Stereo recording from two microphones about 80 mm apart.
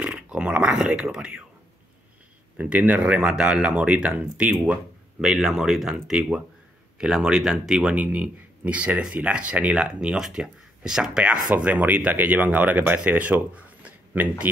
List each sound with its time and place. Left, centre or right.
0.0 s a sound: centre
2.5 s speech: centre
5.2 s speech: centre
11.5 s speech: centre